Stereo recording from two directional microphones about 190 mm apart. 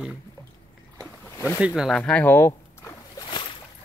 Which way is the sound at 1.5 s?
5° right (ahead or behind).